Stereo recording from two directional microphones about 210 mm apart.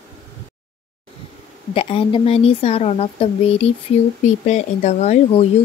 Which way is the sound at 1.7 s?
25° left (ahead or behind).